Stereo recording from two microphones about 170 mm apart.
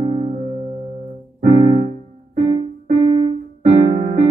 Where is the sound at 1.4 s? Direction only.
50° right (ahead or behind).